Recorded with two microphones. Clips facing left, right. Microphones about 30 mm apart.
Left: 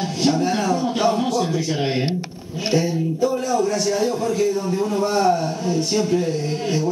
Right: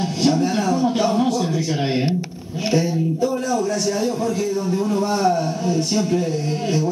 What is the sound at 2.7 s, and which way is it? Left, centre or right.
Speech, centre.